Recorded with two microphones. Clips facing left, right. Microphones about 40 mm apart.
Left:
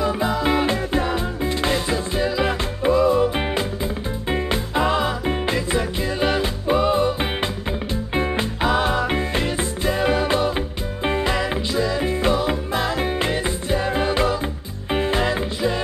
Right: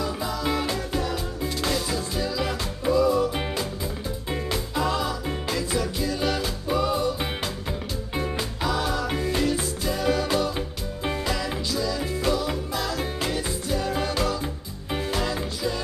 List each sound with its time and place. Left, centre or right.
0.0 s music: left